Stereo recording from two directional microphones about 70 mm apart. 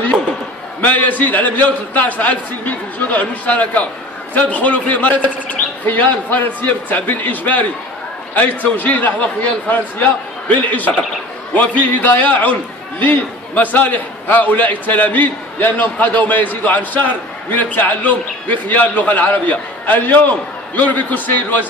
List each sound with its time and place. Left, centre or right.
0.7 s a man's voice: left